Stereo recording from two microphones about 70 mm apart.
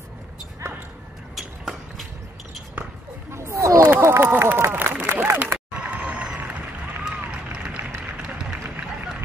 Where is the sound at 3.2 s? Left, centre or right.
Right; by 6.6 s centre.